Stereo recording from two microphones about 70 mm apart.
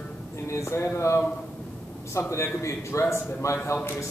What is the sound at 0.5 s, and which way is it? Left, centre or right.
A man's voice, left.